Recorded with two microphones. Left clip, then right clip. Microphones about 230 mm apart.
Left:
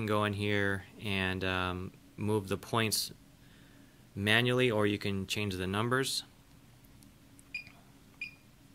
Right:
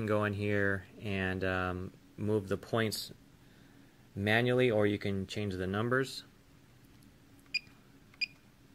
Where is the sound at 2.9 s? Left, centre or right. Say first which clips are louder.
Left 5 dB; left.